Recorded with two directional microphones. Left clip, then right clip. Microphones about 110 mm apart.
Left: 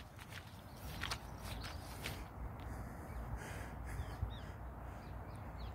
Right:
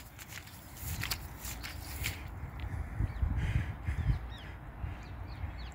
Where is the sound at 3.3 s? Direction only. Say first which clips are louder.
Right 7 dB; 15° left (ahead or behind).